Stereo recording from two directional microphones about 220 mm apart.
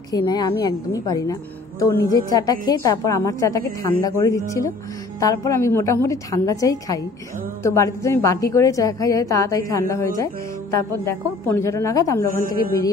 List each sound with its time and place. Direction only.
0.1 s a woman's voice: 15° left (ahead or behind)
11.4 s a woman's voice: 10° left (ahead or behind)
12.3 s a woman's voice: 40° left (ahead or behind)